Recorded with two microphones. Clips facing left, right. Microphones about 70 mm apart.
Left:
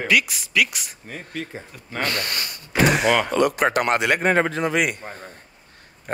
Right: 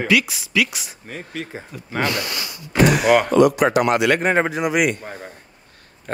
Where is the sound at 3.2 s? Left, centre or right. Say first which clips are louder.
Right 5 dB; right.